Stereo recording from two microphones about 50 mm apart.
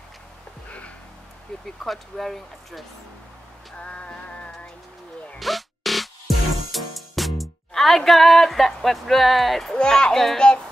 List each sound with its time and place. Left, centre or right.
0.7 s music: left
1.5 s speech: centre
3.7 s music: left
5.4 s music: centre
9.8 s speech: centre
10.4 s music: centre